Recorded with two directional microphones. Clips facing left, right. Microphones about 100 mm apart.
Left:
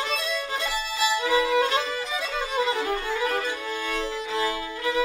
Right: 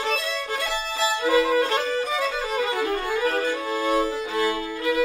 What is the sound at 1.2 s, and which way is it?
Violin, 40° right (ahead or behind).